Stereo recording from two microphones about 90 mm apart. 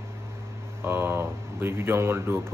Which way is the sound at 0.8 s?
25° right (ahead or behind).